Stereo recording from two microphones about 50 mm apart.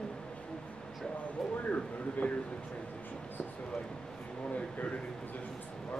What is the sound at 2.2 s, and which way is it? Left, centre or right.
Speech, left.